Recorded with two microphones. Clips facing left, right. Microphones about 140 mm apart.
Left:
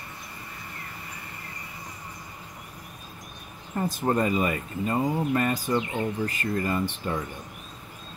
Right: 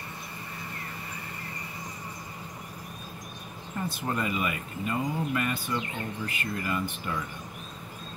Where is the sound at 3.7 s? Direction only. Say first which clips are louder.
Left 6 dB; 40° left (ahead or behind).